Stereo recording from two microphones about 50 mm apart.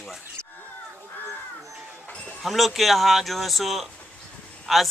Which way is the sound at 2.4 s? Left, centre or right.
Centre.